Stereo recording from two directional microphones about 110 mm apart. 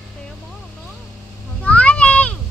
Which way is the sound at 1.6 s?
10° left (ahead or behind).